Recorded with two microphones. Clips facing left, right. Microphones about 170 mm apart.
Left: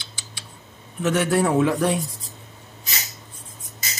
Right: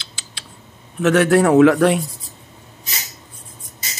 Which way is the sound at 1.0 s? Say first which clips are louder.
Right 6 dB; 75° right (ahead or behind).